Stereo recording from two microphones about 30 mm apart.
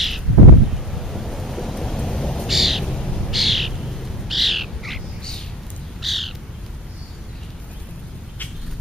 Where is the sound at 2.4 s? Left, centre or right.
Centre.